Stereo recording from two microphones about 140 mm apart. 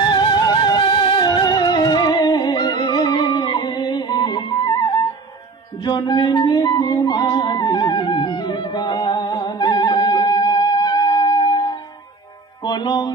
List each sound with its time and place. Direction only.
0.0 s music: 30° left (ahead or behind)